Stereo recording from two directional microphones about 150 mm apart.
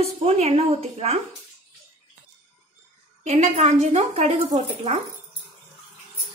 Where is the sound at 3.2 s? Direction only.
45° right (ahead or behind).